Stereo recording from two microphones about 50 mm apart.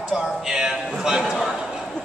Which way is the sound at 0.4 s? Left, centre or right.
Centre.